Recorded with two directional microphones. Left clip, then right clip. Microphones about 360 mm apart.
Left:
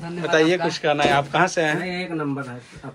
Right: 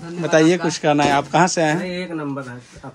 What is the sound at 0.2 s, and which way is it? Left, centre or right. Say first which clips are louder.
A man's voice: right 3 dB; centre.